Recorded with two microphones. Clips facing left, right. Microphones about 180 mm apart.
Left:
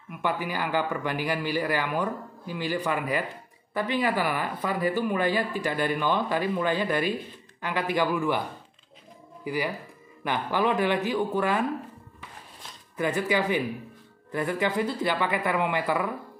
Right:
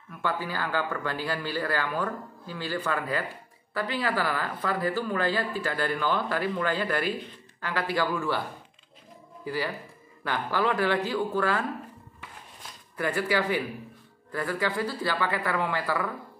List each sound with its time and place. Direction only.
0.1 s speech: 15° left (ahead or behind)
9.4 s speech: 15° left (ahead or behind)
12.9 s speech: 20° left (ahead or behind)